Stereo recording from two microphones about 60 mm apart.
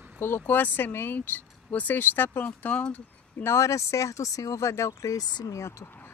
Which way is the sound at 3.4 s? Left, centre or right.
Left.